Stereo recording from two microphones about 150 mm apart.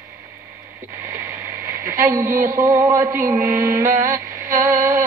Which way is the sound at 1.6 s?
20° right (ahead or behind).